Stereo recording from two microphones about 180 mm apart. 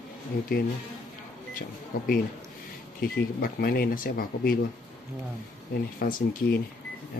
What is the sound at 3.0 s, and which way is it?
Speech, 55° left (ahead or behind).